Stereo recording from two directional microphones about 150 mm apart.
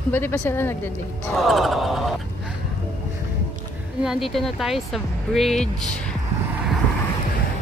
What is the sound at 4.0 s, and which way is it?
Speech, centre (ahead or behind).